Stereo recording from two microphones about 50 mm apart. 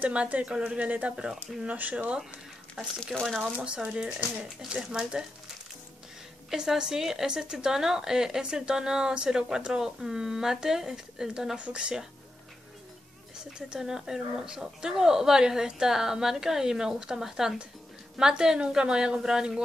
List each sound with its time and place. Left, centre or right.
0.0 s a woman's voice: right
3.1 s a woman's voice: centre
3.6 s a woman's voice: right
6.5 s a woman's voice: centre
13.6 s a woman's voice: centre